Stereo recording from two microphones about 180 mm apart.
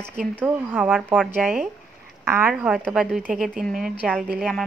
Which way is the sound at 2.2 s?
15° right (ahead or behind).